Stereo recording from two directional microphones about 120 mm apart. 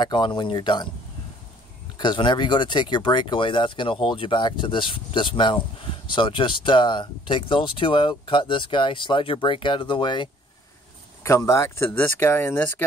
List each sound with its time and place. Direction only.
0.0 s speech: 40° left (ahead or behind)
2.0 s speech: 40° left (ahead or behind)
11.2 s speech: 25° left (ahead or behind)